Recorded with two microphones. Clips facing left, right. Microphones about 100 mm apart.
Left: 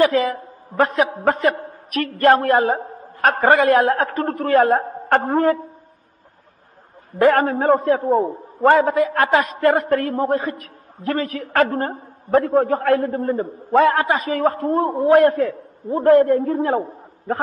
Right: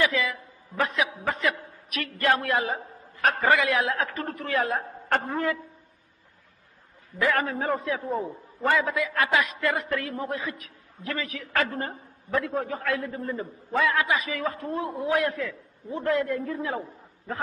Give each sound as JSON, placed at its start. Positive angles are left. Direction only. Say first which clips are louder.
{"t": 0.0, "sound": "a man's voice", "louder": "left 9 dB", "side_deg": 45}
{"t": 7.1, "sound": "a man's voice", "louder": "left 10 dB", "side_deg": 50}